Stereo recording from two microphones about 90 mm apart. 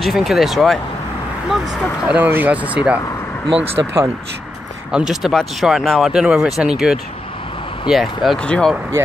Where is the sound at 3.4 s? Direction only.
90° right.